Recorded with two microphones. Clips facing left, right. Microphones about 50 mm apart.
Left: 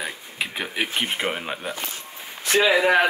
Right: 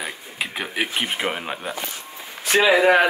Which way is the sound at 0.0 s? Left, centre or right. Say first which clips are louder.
Even; centre.